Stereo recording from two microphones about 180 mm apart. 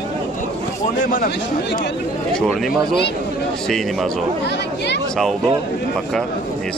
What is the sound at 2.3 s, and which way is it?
A man's voice, centre (ahead or behind).